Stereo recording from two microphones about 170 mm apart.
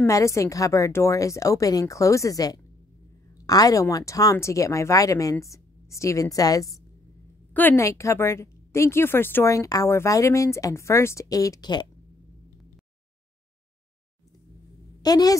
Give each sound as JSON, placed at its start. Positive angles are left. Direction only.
{"t": 0.0, "sound": "a woman's voice", "side_deg": 15}
{"t": 15.0, "sound": "a woman's voice", "side_deg": 20}